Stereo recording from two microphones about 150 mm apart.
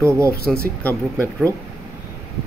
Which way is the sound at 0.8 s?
10° left (ahead or behind).